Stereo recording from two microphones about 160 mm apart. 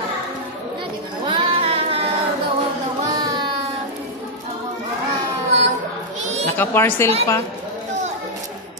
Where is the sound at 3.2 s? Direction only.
25° right (ahead or behind).